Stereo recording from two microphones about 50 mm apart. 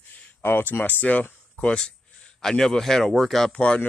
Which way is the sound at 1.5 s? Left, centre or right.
Left.